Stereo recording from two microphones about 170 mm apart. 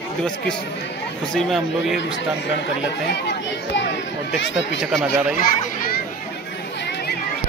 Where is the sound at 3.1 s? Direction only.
80° left.